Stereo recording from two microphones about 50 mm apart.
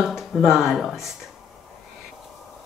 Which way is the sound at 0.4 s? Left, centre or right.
Centre.